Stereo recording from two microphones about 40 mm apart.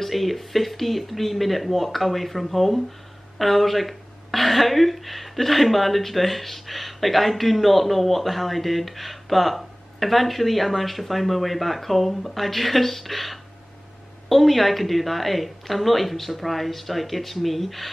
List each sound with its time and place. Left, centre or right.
0.0 s a woman's voice: centre